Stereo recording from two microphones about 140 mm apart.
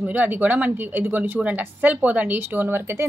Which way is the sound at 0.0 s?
10° right (ahead or behind).